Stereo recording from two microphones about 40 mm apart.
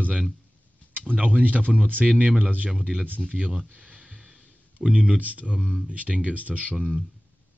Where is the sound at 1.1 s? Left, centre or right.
Right.